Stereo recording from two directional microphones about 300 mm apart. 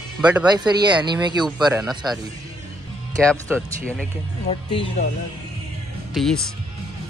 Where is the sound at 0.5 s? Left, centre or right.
Centre.